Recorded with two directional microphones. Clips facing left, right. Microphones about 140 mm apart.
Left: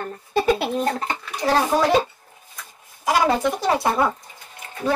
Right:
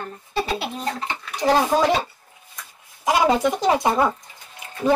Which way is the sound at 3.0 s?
20° right (ahead or behind).